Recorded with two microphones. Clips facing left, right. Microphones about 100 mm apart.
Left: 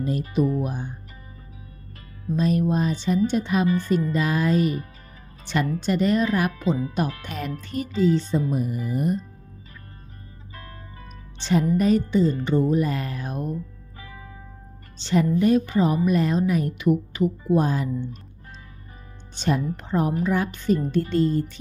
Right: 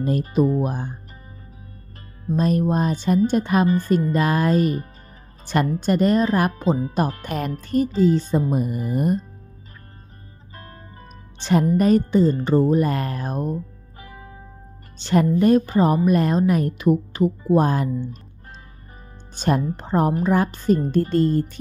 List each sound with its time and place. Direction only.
0.2 s speech: 35° right (ahead or behind)
2.3 s a woman's voice: 45° right (ahead or behind)
10.5 s music: 30° right (ahead or behind)
11.3 s speech: 50° right (ahead or behind)
15.0 s speech: 50° right (ahead or behind)
17.6 s speech: 50° right (ahead or behind)
19.3 s speech: 45° right (ahead or behind)